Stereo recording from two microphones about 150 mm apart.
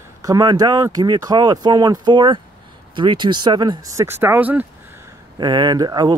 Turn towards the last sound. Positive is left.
turn(degrees=-25)  # may be behind; listen again after turning